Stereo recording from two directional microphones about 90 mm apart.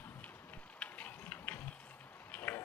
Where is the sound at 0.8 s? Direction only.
20° left (ahead or behind).